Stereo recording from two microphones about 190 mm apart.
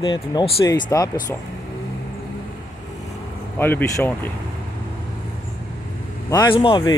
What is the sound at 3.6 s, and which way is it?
Speech, 10° left (ahead or behind).